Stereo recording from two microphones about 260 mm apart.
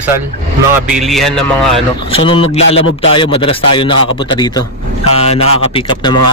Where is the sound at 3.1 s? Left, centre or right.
Centre.